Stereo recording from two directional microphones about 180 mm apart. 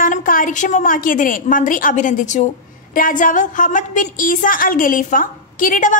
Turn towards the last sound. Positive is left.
turn(degrees=50)  # may be behind; listen again after turning